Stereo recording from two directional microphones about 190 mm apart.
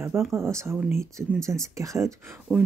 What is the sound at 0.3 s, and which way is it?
Speech, 15° right (ahead or behind).